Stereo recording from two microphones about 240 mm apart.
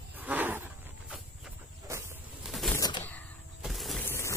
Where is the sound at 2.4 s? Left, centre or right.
Centre.